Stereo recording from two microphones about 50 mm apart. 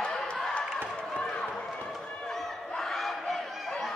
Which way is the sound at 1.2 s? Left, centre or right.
Centre.